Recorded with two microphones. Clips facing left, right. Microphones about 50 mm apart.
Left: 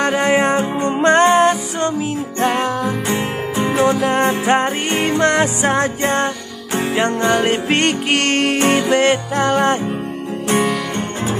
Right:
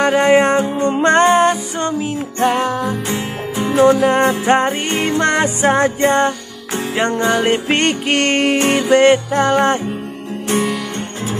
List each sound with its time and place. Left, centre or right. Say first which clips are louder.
0.0 s music: right 3 dB; centre
10.5 s music: left 1 dB; centre